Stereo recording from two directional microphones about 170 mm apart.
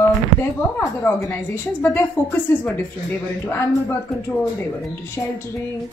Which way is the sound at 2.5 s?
15° left (ahead or behind).